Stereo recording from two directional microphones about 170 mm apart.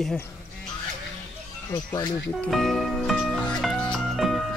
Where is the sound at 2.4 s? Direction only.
Centre (ahead or behind).